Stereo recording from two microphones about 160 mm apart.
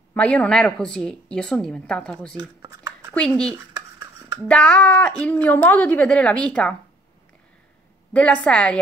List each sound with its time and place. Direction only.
0.1 s a woman's voice: 10° left (ahead or behind)
2.6 s a sound: 15° right (ahead or behind)
3.2 s a woman's voice: 5° left (ahead or behind)
3.5 s dishes: 20° right (ahead or behind)
4.5 s a woman's voice: 5° left (ahead or behind)
8.1 s a woman's voice: 10° left (ahead or behind)